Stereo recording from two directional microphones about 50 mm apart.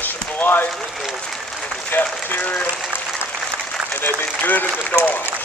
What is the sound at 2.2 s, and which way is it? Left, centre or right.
Speech, left.